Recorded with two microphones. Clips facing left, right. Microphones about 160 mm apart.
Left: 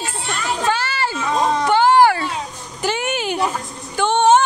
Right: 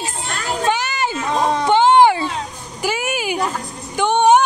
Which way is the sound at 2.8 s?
5° right (ahead or behind).